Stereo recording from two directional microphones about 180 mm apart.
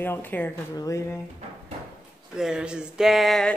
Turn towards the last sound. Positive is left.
turn(degrees=0)  # may be behind; listen again after turning